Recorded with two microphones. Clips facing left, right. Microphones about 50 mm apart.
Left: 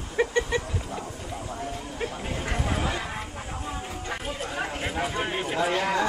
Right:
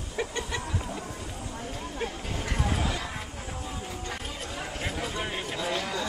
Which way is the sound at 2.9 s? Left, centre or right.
Left.